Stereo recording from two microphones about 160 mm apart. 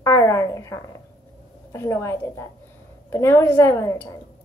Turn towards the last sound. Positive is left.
turn(degrees=20)  # may be behind; listen again after turning